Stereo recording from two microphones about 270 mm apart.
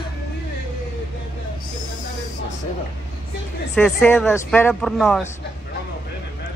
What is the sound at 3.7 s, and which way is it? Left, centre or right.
Speech, centre.